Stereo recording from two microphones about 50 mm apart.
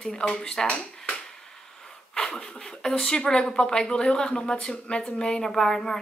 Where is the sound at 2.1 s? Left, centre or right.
Centre.